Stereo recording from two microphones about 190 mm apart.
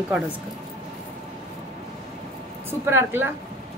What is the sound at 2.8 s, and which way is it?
Speech, 10° right (ahead or behind).